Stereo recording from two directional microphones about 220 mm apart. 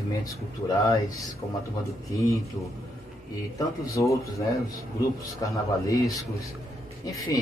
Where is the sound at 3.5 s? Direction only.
15° left (ahead or behind).